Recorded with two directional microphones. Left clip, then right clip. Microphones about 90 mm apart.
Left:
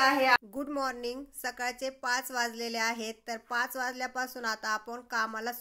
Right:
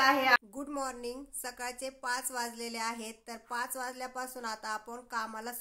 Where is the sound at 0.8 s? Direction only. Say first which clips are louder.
Left 4 dB; 30° left (ahead or behind).